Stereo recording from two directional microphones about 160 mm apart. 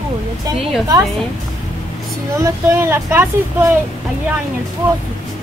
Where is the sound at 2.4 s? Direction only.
15° right (ahead or behind).